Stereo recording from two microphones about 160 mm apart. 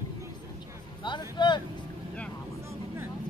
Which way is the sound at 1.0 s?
30° left (ahead or behind).